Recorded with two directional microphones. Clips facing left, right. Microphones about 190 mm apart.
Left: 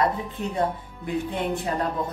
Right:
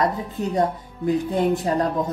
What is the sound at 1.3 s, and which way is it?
Speech, 40° right (ahead or behind).